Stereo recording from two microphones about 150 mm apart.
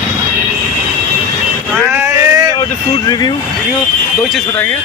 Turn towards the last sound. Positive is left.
turn(degrees=25)  # may be behind; listen again after turning